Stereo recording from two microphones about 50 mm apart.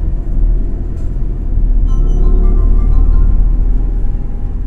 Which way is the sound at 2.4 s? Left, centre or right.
Centre.